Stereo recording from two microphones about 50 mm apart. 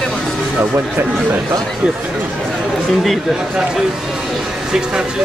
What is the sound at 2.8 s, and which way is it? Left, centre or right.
Speech, centre.